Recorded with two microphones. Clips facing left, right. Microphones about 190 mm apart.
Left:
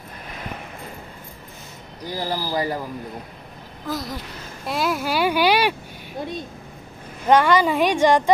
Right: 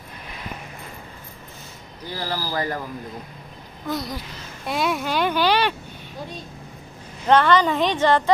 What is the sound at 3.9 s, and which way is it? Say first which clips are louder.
Speech: right 1 dB; centre (ahead or behind).